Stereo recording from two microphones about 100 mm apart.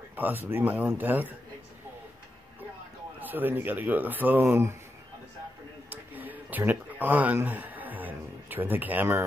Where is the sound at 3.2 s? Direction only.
20° right (ahead or behind).